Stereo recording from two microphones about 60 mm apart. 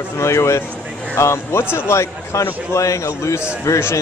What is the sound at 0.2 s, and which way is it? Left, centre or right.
A man's voice, left.